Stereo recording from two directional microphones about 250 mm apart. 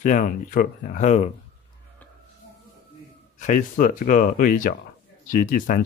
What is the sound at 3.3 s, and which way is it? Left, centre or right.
Speech, left.